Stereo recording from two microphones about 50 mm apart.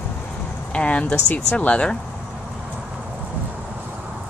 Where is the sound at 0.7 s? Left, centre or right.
Left.